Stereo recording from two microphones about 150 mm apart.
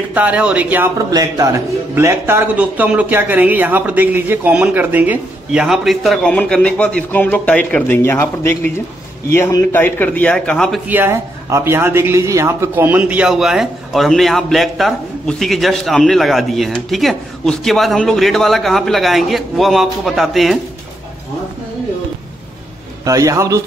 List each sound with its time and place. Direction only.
0.1 s speech: 10° right (ahead or behind)
1.1 s a man's voice: 25° right (ahead or behind); by 10.8 s 5° left (ahead or behind)
10.9 s a man's voice: 15° right (ahead or behind)
23.0 s a man's voice: 20° right (ahead or behind)